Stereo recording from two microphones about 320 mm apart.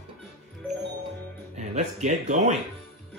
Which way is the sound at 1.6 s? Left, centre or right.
Right.